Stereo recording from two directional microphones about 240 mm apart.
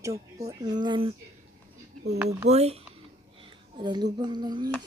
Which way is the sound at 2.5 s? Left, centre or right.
Right.